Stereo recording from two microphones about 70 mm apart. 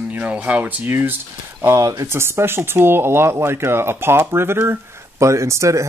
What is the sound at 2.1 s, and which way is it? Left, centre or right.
Speech, right.